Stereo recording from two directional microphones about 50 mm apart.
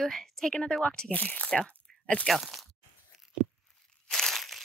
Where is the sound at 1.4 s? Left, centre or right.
Centre.